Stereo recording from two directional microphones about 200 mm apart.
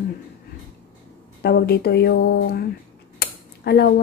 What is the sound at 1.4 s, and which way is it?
Speech, 55° left (ahead or behind).